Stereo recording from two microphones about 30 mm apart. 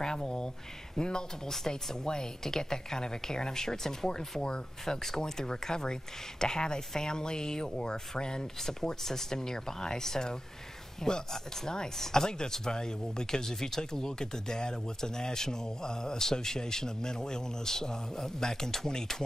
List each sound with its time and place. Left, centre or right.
0.0 s a sound: left
0.9 s speech: left
8.6 s speech: centre